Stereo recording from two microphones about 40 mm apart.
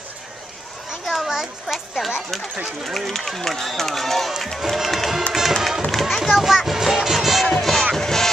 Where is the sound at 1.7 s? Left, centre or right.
Centre.